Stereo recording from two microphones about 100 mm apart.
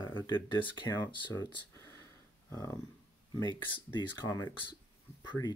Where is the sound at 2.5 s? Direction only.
30° left (ahead or behind).